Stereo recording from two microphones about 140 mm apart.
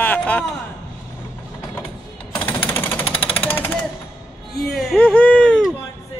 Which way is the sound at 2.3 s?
15° left (ahead or behind).